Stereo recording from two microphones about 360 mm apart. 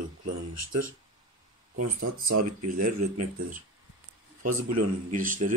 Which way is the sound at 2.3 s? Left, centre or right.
Right.